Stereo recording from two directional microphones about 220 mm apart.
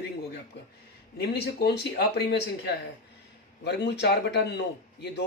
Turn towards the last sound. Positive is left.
turn(degrees=50)  # may be behind; listen again after turning